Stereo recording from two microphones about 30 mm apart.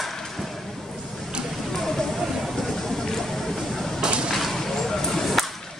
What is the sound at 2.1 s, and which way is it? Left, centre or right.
Vehicle, centre.